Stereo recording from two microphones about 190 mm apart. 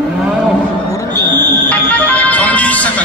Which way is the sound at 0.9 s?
15° left (ahead or behind).